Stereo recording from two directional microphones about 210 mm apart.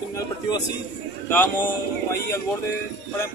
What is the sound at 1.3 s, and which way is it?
Speech, 10° left (ahead or behind).